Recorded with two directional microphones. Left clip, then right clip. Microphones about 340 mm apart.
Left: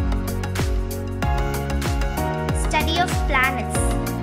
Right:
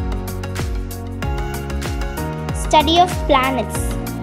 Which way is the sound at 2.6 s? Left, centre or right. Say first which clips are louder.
Right 9 dB; centre.